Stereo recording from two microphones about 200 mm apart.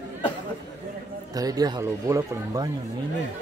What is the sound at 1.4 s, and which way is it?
Speech, 20° right (ahead or behind).